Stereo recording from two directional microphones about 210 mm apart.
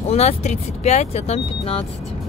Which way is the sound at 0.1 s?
30° left (ahead or behind).